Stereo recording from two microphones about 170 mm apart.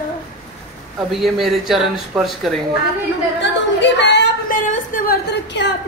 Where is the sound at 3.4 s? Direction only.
90° left.